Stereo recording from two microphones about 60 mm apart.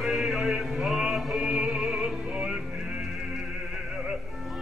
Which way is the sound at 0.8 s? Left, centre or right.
Centre.